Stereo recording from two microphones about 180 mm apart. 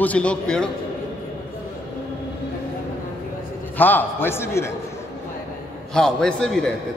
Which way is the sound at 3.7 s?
10° left (ahead or behind).